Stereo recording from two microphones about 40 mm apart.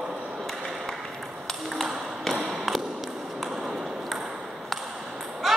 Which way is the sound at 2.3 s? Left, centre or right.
Centre.